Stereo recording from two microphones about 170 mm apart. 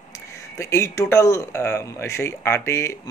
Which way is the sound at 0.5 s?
15° left (ahead or behind).